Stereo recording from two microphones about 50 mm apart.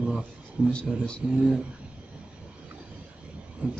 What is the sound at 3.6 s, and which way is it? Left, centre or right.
Heart murmur, right.